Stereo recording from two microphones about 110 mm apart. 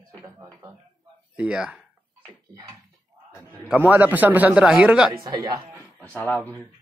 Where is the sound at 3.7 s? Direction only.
15° right (ahead or behind).